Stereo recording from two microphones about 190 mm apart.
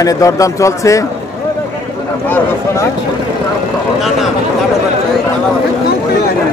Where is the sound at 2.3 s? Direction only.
10° left (ahead or behind).